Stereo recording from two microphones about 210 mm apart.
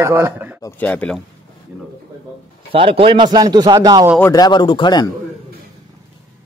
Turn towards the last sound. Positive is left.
turn(degrees=20)  # may be behind; listen again after turning